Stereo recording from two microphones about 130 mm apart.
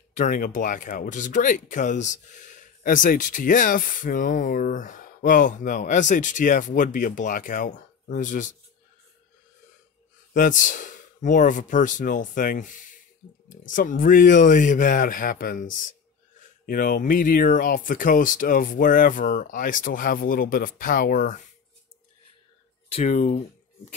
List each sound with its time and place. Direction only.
0.1 s speech: 85° left
10.3 s speech: 90° left
23.0 s speech: 60° left (ahead or behind)